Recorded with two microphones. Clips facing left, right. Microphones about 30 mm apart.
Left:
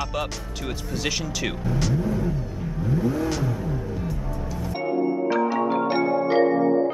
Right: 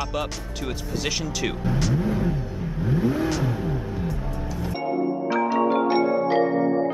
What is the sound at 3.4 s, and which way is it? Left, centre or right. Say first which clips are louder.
Music: right 1 dB; right.